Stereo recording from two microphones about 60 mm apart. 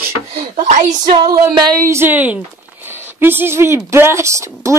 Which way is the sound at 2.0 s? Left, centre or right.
Right.